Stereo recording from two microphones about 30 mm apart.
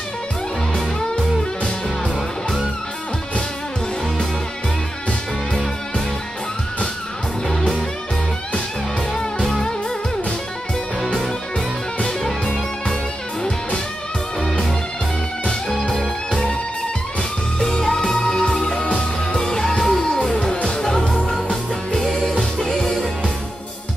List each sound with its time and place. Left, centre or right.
7.4 s music: left
9.4 s music: centre
16.3 s music: left
17.6 s music: centre
21.9 s music: centre
22.3 s music: left
22.7 s music: centre